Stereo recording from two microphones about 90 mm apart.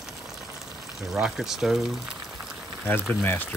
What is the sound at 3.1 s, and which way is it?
Speech, 20° left (ahead or behind).